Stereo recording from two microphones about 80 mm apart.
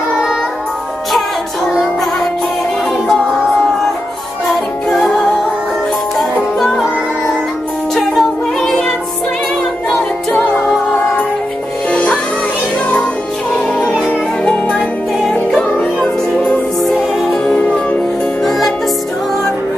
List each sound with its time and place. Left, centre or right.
4.8 s music: centre
7.9 s music: centre
10.3 s music: centre
11.9 s music: centre
14.0 s music: centre
18.4 s music: centre